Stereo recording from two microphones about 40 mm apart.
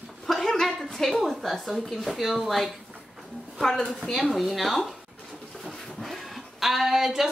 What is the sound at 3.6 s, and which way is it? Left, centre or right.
Speech, centre.